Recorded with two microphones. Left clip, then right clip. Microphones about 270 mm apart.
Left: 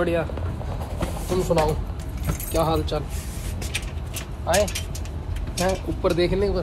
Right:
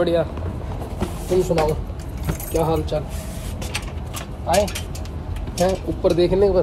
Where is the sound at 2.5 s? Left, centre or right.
Centre.